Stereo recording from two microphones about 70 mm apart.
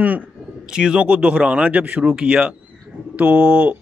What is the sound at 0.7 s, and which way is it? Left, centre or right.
Speech, centre.